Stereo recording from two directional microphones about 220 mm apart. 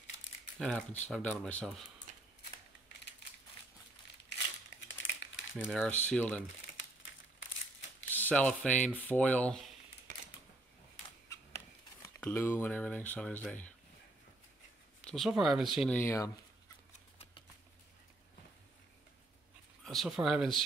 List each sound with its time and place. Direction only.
0.6 s speech: 5° left (ahead or behind)
4.6 s crumpling: 55° left (ahead or behind)
5.7 s speech: centre (ahead or behind)
8.1 s speech: 5° left (ahead or behind)
11.2 s a sound: 15° left (ahead or behind)
15.0 s speech: centre (ahead or behind)
19.8 s speech: centre (ahead or behind)